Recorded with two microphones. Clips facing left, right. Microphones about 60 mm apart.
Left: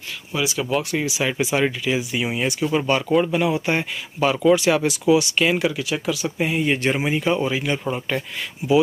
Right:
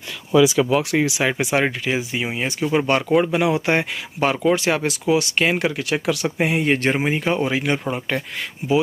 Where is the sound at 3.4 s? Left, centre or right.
Right.